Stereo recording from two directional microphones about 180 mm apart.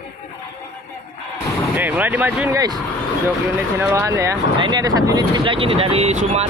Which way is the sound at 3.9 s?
15° right (ahead or behind).